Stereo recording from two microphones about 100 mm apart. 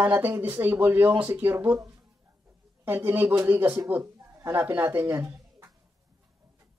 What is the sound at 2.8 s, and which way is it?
A man's voice, 20° right (ahead or behind).